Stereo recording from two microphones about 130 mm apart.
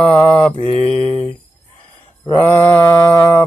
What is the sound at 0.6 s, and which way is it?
Mantra, 50° left (ahead or behind).